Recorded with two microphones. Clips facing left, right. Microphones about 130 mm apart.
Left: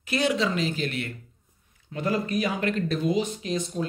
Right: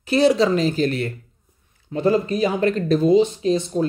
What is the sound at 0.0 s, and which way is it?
Speech, 30° right (ahead or behind).